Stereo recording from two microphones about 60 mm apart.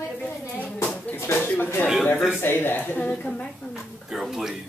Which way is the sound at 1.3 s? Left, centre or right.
Left.